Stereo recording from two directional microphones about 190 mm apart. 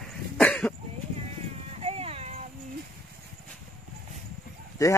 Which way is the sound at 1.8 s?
30° right (ahead or behind).